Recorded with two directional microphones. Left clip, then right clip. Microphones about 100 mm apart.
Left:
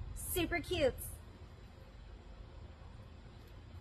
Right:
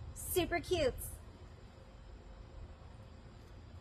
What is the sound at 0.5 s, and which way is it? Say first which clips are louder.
Speech: left 2 dB; 30° right (ahead or behind).